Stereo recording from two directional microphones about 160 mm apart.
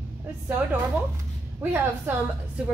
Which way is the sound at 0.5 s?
10° right (ahead or behind).